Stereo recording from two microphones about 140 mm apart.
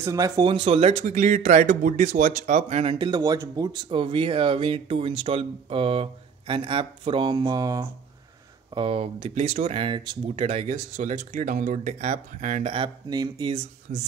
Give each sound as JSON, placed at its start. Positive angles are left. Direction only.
{"t": 0.0, "sound": "speech", "side_deg": -25}
{"t": 8.7, "sound": "speech", "side_deg": -40}
{"t": 12.7, "sound": "speech", "side_deg": -35}
{"t": 13.9, "sound": "a man's voice", "side_deg": -75}